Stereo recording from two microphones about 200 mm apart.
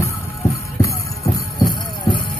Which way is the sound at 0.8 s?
15° left (ahead or behind).